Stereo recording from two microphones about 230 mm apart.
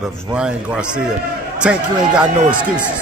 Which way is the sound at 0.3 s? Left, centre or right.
Centre.